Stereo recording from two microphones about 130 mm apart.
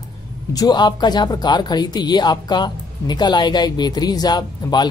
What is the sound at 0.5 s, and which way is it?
Speech, 30° left (ahead or behind).